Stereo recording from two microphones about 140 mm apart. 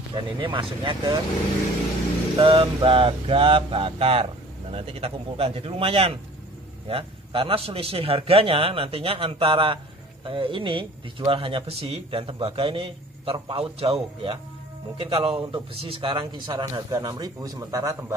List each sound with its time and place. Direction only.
0.1 s speech: 35° right (ahead or behind)
2.3 s speech: 40° right (ahead or behind); by 18.1 s 25° right (ahead or behind)